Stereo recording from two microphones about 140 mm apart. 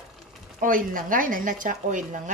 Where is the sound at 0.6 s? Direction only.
80° right.